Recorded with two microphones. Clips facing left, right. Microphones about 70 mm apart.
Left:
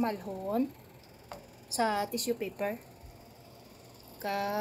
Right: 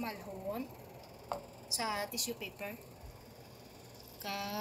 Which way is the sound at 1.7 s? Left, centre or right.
Left.